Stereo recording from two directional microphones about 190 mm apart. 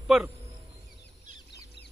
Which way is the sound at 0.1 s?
Centre (ahead or behind).